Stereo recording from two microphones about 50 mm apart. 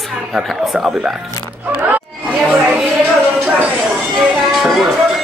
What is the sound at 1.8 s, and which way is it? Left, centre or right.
Chatter, right.